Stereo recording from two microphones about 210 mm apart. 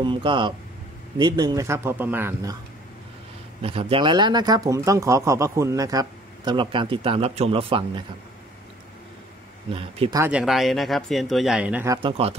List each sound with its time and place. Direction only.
0.0 s a man's voice: 25° right (ahead or behind)
3.6 s speech: 25° right (ahead or behind)
9.7 s speech: 25° right (ahead or behind)
10.2 s speech: 5° right (ahead or behind)
12.0 s speech: 25° right (ahead or behind)